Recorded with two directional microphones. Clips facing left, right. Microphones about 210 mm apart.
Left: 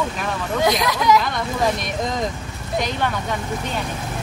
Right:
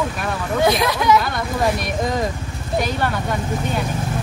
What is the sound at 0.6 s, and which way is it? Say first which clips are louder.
Speech: right 1 dB; 25° right (ahead or behind).